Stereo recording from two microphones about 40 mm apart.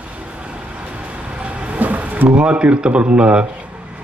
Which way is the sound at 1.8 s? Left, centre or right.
Right.